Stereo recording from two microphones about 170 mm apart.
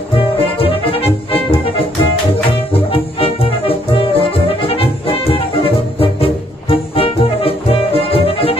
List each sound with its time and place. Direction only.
0.1 s music: 35° left (ahead or behind)
2.7 s music: 35° left (ahead or behind)